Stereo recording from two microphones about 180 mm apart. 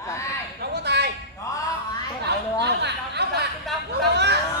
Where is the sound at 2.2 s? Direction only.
65° right (ahead or behind).